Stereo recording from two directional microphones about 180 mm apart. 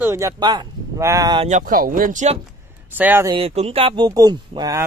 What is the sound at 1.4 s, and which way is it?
Speech, 45° right (ahead or behind).